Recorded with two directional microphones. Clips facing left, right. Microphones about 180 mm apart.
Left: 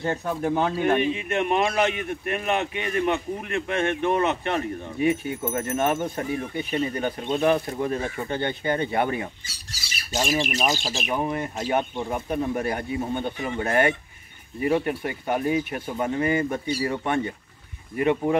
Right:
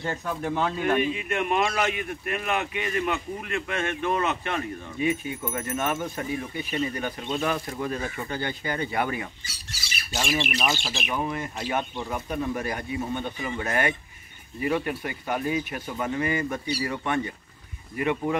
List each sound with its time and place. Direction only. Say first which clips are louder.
0.0 s a man's voice: left 4 dB; 30° left (ahead or behind)
16.6 s speech: left 3 dB; 45° left (ahead or behind)
16.9 s a man's voice: left 2 dB; 30° left (ahead or behind)